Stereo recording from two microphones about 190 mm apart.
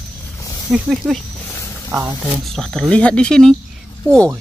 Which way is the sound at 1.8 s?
15° right (ahead or behind).